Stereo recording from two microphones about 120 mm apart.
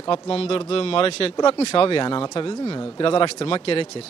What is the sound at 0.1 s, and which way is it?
A man's voice, 50° left (ahead or behind).